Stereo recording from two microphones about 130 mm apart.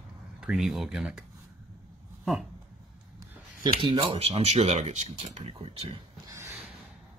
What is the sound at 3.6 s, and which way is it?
Speech, 40° right (ahead or behind).